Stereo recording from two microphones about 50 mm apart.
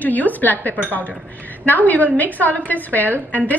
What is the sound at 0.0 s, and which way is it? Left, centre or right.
A woman's voice, left.